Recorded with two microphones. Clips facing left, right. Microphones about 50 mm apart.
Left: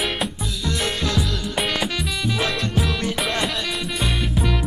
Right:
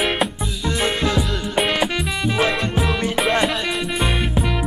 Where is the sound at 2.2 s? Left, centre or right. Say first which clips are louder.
Right 5 dB; right.